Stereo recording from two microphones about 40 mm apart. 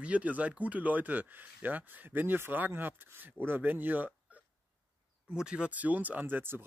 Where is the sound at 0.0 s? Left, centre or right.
Right.